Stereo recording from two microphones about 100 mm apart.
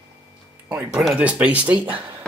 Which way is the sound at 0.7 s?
15° right (ahead or behind).